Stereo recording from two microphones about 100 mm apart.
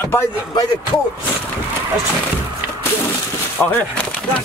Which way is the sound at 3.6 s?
20° left (ahead or behind).